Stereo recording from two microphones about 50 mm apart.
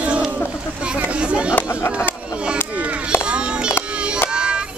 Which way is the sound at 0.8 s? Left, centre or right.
Right.